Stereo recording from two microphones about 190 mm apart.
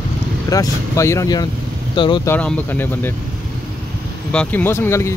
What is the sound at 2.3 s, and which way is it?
Speech, 10° left (ahead or behind).